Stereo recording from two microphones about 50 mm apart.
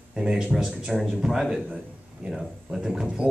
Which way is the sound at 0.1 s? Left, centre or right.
Centre.